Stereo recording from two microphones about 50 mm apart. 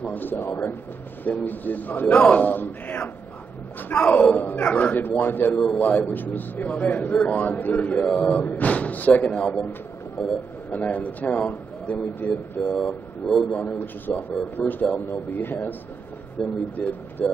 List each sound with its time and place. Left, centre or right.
0.0 s a man's voice: left
0.5 s speech: left
1.2 s a man's voice: left
10.2 s a man's voice: centre
10.7 s a man's voice: left
12.6 s speech: centre
13.6 s a man's voice: left
14.1 s speech: left
15.0 s a man's voice: left
16.4 s a man's voice: centre
16.8 s speech: left